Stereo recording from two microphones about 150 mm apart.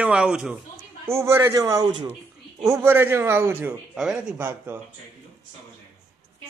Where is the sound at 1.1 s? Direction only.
20° right (ahead or behind).